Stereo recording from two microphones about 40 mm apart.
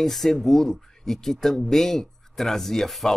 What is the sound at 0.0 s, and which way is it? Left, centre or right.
Speech, centre.